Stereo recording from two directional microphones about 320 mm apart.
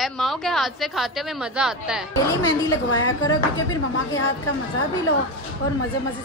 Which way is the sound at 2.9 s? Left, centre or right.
Left.